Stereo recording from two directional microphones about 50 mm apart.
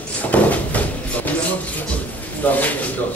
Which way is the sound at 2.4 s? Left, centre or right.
Left.